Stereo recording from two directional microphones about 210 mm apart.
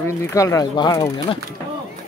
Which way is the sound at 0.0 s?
15° left (ahead or behind).